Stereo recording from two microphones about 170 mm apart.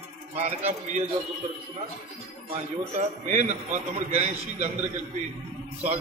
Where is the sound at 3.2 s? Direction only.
45° right (ahead or behind).